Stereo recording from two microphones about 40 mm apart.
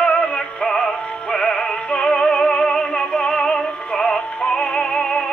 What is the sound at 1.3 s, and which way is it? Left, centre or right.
Music, left.